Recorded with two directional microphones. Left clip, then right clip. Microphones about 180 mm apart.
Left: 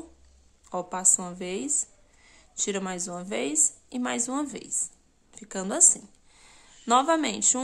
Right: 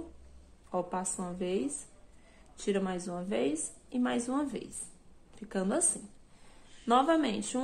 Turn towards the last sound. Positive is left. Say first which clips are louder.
# left 5 dB
turn(degrees=25)  # may be behind; listen again after turning